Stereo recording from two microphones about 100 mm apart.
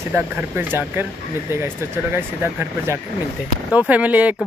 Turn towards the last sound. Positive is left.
turn(degrees=-15)  # may be behind; listen again after turning